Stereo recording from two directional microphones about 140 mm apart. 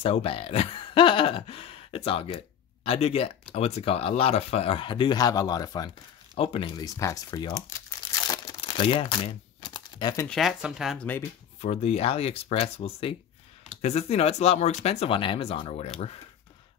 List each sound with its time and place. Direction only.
0.0 s speech: 40° left (ahead or behind)
6.3 s speech: 40° left (ahead or behind)
6.8 s speech: 25° left (ahead or behind)
8.3 s crumpling: 30° left (ahead or behind)
10.2 s speech: centre (ahead or behind)
11.6 s speech: 50° left (ahead or behind)